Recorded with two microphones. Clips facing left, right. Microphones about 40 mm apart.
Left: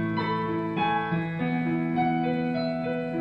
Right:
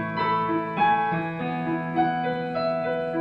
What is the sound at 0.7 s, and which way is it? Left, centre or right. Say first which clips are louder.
Music: right 6 dB; centre.